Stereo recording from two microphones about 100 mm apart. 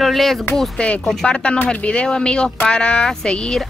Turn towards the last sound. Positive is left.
turn(degrees=5)  # may be behind; listen again after turning